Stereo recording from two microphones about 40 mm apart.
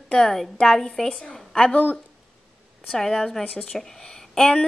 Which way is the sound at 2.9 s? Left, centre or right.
Centre.